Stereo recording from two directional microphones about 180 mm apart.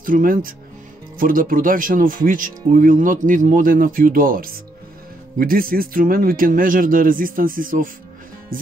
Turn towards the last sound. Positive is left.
turn(degrees=-50)  # may be behind; listen again after turning